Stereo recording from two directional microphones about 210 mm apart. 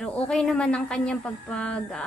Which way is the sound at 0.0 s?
5° left (ahead or behind).